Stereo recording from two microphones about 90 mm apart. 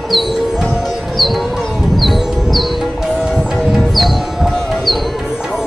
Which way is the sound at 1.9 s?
Centre (ahead or behind).